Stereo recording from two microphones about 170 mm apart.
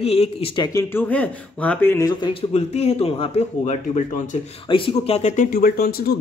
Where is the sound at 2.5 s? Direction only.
40° left (ahead or behind).